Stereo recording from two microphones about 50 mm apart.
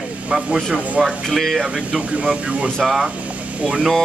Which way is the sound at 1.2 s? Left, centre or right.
Centre.